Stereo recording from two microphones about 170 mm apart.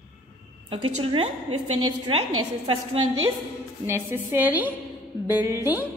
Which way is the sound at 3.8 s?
15° right (ahead or behind).